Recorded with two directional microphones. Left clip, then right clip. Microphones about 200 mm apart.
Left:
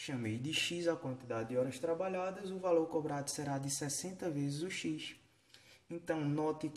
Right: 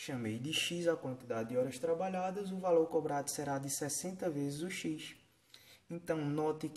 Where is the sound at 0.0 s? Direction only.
5° right (ahead or behind).